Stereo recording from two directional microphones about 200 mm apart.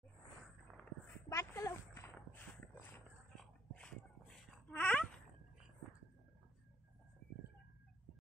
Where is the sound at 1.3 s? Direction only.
15° left (ahead or behind).